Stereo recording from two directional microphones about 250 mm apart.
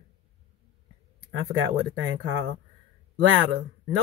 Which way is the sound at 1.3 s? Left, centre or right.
Right.